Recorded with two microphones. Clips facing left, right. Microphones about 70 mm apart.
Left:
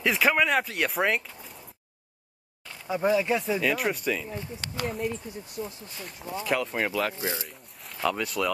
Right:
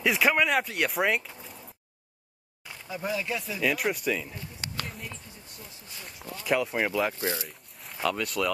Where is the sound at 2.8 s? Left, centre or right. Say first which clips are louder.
Left 8 dB; centre.